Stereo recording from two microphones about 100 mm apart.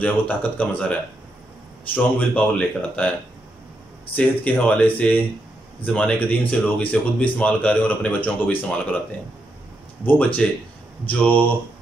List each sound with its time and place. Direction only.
0.0 s speech: 15° left (ahead or behind)
2.0 s speech: 15° left (ahead or behind)
4.1 s speech: 15° left (ahead or behind)
10.0 s speech: 15° left (ahead or behind)